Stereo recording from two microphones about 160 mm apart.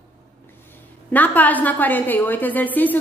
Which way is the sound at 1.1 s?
10° left (ahead or behind).